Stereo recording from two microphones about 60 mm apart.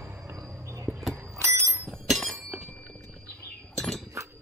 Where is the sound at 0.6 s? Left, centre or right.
Right.